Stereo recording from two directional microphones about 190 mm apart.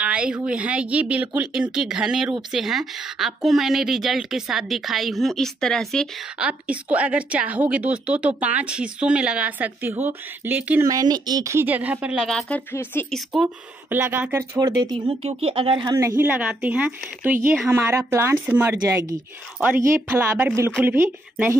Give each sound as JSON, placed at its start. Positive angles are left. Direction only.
{"t": 0.0, "sound": "a woman's voice", "side_deg": -5}
{"t": 10.9, "sound": "a woman's voice", "side_deg": -20}
{"t": 13.3, "sound": "a woman's voice", "side_deg": -5}